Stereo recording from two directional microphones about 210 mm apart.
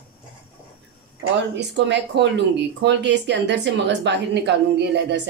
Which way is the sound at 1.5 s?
55° right (ahead or behind).